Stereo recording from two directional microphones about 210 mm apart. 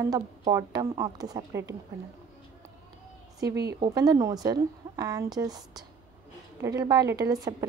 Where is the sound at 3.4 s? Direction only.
50° right (ahead or behind).